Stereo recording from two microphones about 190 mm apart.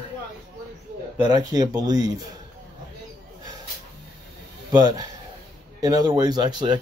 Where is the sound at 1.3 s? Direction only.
20° right (ahead or behind).